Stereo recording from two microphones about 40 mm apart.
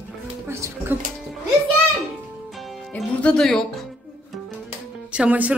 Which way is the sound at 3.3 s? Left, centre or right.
Left.